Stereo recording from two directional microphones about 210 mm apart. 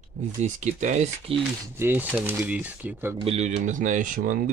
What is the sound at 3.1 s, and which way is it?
Speech, 30° right (ahead or behind).